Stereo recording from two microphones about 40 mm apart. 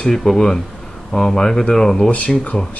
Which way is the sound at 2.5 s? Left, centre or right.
Left.